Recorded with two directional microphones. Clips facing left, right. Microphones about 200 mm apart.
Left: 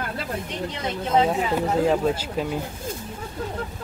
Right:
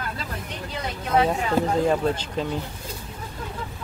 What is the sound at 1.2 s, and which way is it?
Speech, 5° left (ahead or behind).